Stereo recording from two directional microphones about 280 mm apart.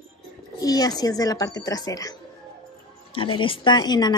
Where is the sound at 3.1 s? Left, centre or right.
Centre.